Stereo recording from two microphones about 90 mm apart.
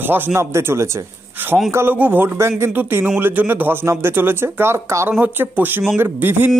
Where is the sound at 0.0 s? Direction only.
25° right (ahead or behind).